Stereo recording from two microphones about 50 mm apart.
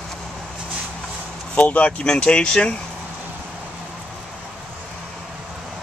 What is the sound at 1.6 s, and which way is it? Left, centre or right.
Speech, left.